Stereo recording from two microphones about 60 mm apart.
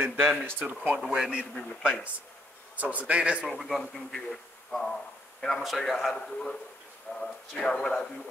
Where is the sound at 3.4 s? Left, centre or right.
Centre.